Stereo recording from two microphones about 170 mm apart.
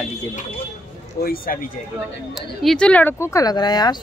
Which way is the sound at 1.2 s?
60° left (ahead or behind).